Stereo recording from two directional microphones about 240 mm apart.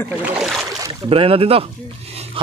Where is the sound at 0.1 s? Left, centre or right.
Centre.